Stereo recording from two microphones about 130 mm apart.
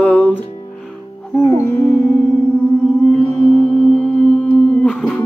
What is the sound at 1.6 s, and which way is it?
Music, 15° left (ahead or behind).